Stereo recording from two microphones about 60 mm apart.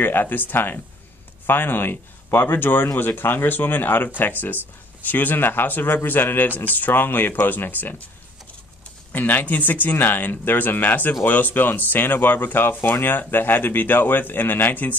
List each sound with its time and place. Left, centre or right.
0.0 s speech: left
9.1 s speech: left